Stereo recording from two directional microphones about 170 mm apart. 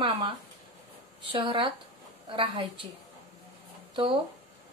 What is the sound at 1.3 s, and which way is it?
Speech, 30° right (ahead or behind).